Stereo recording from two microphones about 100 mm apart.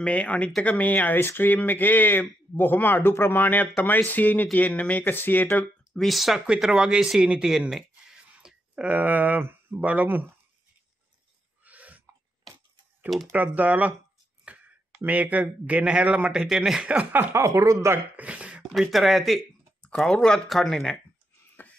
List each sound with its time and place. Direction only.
0.0 s speech: 10° left (ahead or behind)
5.9 s speech: centre (ahead or behind); by 10.2 s 15° right (ahead or behind)
11.6 s a sound: 15° right (ahead or behind)
13.3 s a man's voice: 15° right (ahead or behind)
14.4 s a sound: 15° right (ahead or behind)
15.0 s a man's voice: 15° right (ahead or behind)
18.6 s speech: centre (ahead or behind)